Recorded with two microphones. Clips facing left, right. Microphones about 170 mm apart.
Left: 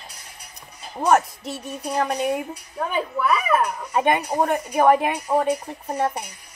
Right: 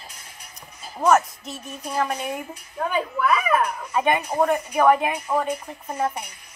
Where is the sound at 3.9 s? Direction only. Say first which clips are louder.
Left 2 dB; 35° left (ahead or behind).